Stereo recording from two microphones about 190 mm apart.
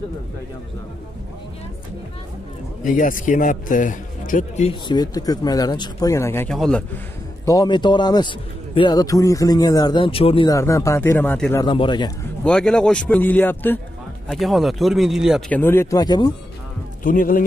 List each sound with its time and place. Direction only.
2.8 s a man's voice: 45° left (ahead or behind); by 6.8 s 5° left (ahead or behind)
7.4 s a man's voice: 20° left (ahead or behind)
10.5 s speech: 15° left (ahead or behind)
11.6 s a man's voice: 25° left (ahead or behind)
12.4 s speech: 5° left (ahead or behind)
14.3 s speech: centre (ahead or behind); by 16.3 s 20° left (ahead or behind)
17.0 s speech: 45° left (ahead or behind)